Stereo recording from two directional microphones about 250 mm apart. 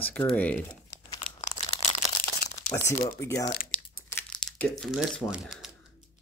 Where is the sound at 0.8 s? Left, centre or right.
Left.